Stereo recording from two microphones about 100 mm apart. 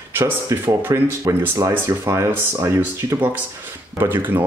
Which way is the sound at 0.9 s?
35° right (ahead or behind).